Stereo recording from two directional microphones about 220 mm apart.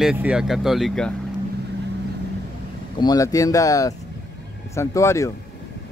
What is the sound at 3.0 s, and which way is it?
Speech, 15° left (ahead or behind).